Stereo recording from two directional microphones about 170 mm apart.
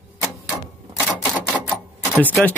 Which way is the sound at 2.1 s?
10° right (ahead or behind).